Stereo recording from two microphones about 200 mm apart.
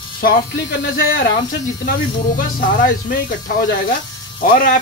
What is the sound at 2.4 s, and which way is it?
Speech, 45° left (ahead or behind).